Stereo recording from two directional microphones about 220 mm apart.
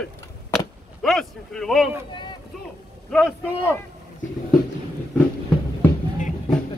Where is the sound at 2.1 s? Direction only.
20° left (ahead or behind).